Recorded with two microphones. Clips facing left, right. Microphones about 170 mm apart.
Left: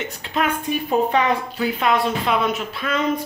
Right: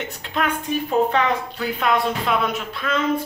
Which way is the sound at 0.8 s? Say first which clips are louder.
Left 1 dB; 15° left (ahead or behind).